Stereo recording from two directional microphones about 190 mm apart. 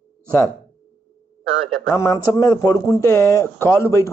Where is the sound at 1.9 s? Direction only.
15° left (ahead or behind).